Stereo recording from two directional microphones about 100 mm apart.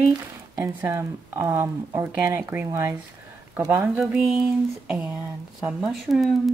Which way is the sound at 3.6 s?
35° right (ahead or behind).